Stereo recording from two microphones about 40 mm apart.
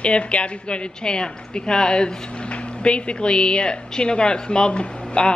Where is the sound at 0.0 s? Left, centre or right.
Left.